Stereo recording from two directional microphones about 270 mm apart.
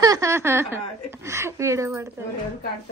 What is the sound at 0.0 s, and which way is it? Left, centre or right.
Speech, centre.